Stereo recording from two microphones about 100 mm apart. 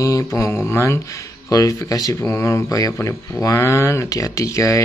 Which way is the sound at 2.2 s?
25° left (ahead or behind).